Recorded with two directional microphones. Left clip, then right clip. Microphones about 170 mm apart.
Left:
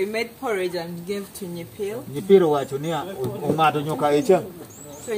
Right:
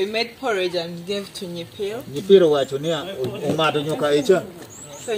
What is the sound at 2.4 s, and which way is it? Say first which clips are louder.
A man's voice: right 4 dB; 25° left (ahead or behind).